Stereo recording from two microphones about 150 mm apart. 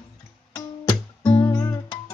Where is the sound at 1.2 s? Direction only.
30° left (ahead or behind).